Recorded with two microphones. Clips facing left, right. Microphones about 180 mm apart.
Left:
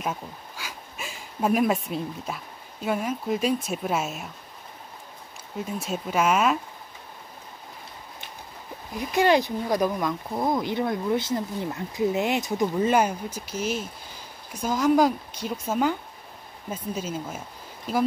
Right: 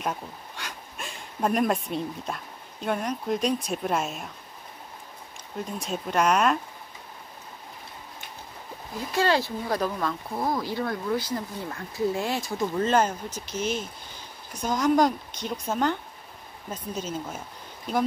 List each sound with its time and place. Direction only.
0.0 s speech: centre (ahead or behind)
5.6 s speech: 5° left (ahead or behind)
8.9 s speech: 15° left (ahead or behind)